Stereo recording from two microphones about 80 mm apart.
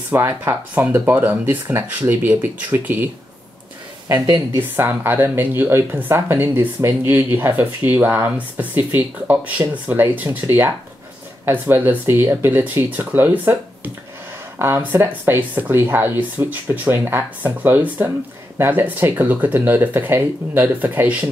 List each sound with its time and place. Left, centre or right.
0.1 s speech: right
4.6 s speech: right
10.4 s speech: right